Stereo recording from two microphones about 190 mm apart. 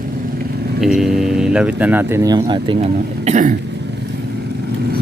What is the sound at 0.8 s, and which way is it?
Speech, centre (ahead or behind).